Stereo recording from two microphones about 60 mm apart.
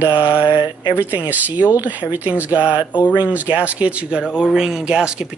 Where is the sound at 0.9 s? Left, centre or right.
Right.